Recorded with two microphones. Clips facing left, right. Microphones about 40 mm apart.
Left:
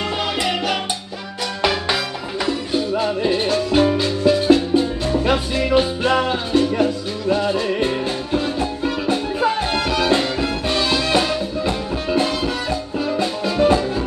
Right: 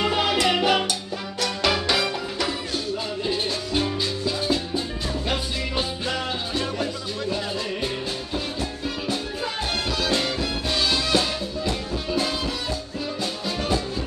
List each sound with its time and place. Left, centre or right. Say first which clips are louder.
0.0 s music: even; centre
1.4 s music: left 3 dB; centre
3.0 s music: left 7 dB; left